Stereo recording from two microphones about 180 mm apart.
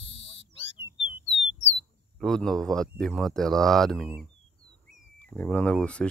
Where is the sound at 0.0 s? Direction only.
30° left (ahead or behind).